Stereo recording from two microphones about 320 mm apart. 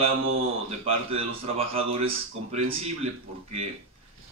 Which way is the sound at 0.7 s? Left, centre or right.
Centre.